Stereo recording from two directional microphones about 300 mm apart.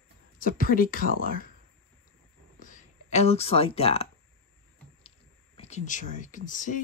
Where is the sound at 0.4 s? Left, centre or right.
Left.